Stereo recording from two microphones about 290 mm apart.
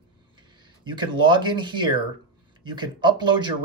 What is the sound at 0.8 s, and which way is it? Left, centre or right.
Speech, centre.